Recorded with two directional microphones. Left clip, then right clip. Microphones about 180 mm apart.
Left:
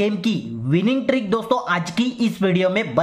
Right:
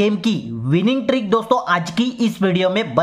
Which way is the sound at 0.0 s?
20° right (ahead or behind).